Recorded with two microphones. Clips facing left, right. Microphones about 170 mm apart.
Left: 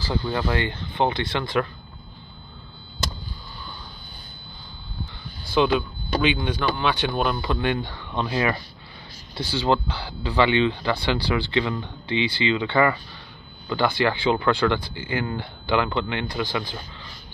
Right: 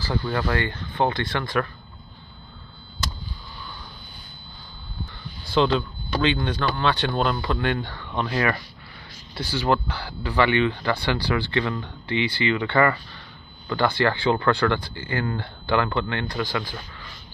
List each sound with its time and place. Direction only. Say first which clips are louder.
0.0 s speech: even; 20° left (ahead or behind)
5.5 s speech: even; 10° left (ahead or behind)